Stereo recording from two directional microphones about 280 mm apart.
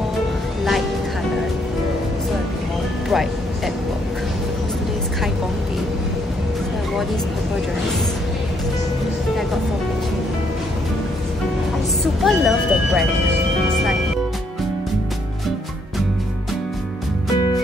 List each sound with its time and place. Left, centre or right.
3.1 s music: centre
12.0 s vehicle: centre